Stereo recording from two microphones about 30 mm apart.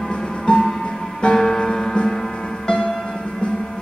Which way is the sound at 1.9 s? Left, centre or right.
Left.